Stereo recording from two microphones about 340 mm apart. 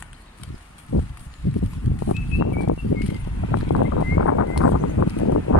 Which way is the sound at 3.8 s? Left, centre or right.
Left.